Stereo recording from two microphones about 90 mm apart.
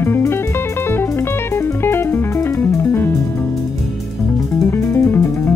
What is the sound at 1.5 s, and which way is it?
Music, 25° left (ahead or behind).